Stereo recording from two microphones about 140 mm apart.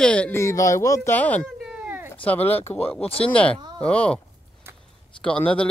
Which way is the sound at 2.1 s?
10° left (ahead or behind).